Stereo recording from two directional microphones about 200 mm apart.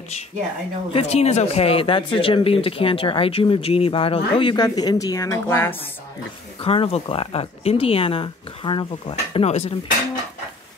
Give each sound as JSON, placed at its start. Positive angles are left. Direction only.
{"t": 0.9, "sound": "speech", "side_deg": 30}
{"t": 6.6, "sound": "speech", "side_deg": 30}